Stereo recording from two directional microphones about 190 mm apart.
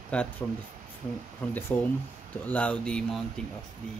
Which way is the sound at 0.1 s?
5° left (ahead or behind).